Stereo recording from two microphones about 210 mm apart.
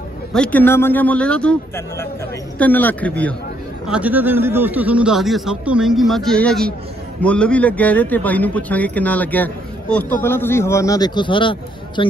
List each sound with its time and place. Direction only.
0.3 s a man's voice: 5° left (ahead or behind)
3.8 s a man's voice: 5° right (ahead or behind); by 12.1 s 25° left (ahead or behind)